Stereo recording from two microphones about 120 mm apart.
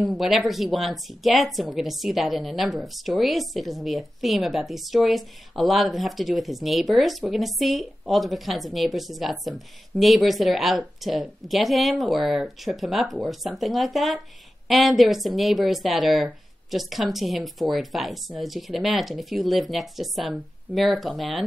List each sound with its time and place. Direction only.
0.2 s a woman's voice: centre (ahead or behind)